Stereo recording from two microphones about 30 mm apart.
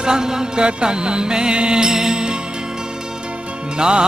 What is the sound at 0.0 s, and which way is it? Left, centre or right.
Music, right.